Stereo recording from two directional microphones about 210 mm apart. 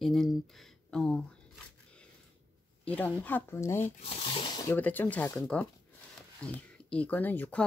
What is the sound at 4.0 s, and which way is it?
Speech, 25° left (ahead or behind).